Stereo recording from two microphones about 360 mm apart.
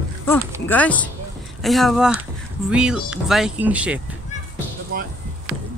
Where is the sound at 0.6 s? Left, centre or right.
Centre.